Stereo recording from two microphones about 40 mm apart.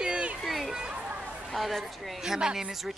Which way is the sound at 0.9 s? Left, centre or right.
Right.